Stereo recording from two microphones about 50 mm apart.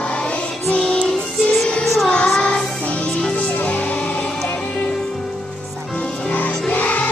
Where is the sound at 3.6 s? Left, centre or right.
Left.